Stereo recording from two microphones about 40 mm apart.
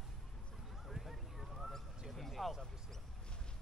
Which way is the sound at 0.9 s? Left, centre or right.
Centre.